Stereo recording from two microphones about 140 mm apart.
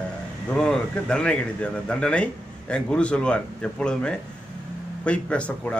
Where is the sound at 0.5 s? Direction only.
5° left (ahead or behind).